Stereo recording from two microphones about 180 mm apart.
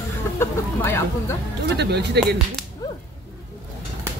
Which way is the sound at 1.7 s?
70° right (ahead or behind).